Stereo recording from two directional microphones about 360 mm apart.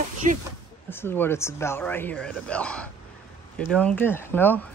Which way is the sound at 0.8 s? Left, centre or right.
Centre.